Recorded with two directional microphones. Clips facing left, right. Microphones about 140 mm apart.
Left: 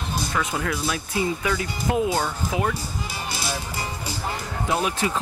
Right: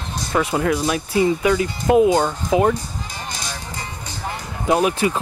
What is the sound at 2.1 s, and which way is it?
Speech, 35° right (ahead or behind).